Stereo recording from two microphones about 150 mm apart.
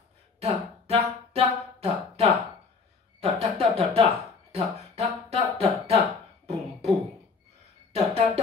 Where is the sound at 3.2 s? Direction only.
40° right (ahead or behind).